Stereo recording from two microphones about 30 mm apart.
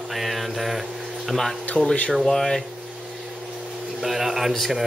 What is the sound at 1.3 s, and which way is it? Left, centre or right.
Speech, centre.